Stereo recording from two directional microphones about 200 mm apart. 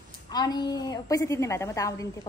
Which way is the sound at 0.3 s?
20° left (ahead or behind).